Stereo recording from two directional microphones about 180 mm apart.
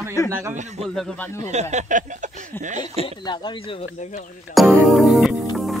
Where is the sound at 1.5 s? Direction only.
40° right (ahead or behind).